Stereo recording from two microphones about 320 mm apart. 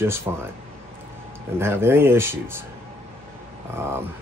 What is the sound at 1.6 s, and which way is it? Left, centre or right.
Speech, centre.